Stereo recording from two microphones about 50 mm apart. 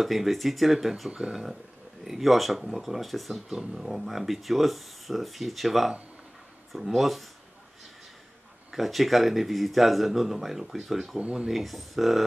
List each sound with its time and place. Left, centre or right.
0.0 s speech: centre
1.1 s speech: right
2.0 s speech: centre
8.7 s speech: centre
11.1 s speech: right
11.4 s speech: centre